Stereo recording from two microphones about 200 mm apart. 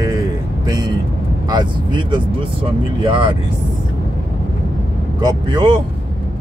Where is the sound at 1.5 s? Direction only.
20° right (ahead or behind).